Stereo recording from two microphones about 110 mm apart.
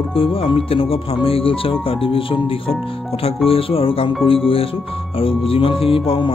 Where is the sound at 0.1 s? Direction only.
55° left (ahead or behind).